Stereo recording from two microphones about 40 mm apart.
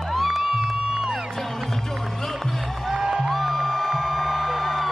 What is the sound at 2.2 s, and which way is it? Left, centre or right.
Music, centre.